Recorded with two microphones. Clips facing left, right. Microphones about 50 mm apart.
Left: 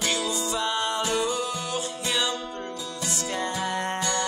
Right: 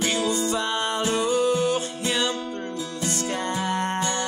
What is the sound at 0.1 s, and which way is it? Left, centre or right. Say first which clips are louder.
Music: right 4 dB; right.